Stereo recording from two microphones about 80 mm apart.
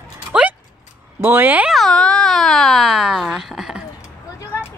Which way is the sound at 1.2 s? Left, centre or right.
Right.